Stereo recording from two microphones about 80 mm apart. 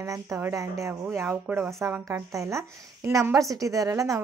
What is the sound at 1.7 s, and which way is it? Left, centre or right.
Speech, right.